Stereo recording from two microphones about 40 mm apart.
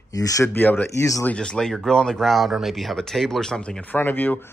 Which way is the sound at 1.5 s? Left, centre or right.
Centre.